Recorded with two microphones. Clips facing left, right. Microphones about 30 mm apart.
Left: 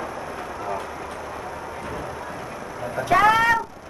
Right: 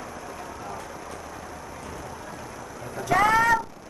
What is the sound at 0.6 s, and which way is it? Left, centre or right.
Vehicle, left.